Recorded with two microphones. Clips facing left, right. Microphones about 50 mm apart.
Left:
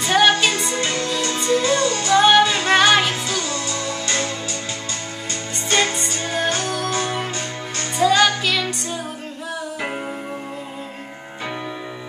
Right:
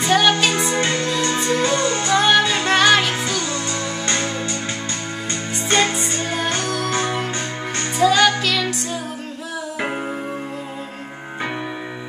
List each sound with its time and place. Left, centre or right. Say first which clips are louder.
0.1 s music: left 1 dB; centre
0.5 s music: right 2 dB; centre
0.7 s music: right 2 dB; right
2.1 s music: left 3 dB; centre
3.4 s music: right 1 dB; right
5.7 s music: right 1 dB; right
5.9 s music: right 1 dB; centre
8.0 s music: right 1 dB; centre